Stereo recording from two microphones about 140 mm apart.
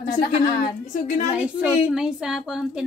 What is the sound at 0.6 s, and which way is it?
Speech, 60° left (ahead or behind).